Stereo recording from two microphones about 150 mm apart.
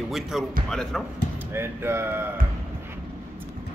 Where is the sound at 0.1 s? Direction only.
Centre (ahead or behind).